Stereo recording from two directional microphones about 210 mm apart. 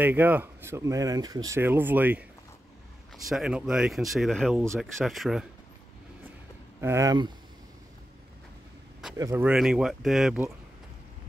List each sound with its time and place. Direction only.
0.0 s speech: 10° right (ahead or behind)
3.3 s speech: centre (ahead or behind)
6.8 s speech: 15° right (ahead or behind)
9.1 s speech: 15° right (ahead or behind)